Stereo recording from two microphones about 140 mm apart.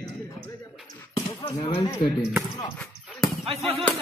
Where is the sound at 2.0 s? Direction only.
40° left (ahead or behind).